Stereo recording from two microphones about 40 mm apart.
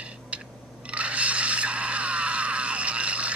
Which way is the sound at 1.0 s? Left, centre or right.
Right.